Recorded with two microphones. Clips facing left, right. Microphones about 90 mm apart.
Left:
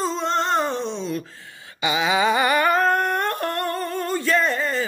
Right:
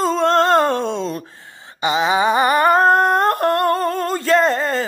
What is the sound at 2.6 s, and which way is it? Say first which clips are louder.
Humming: right 6 dB; 40° right (ahead or behind).